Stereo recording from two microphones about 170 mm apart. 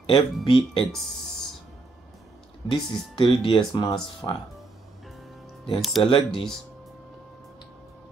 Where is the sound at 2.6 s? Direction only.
30° left (ahead or behind).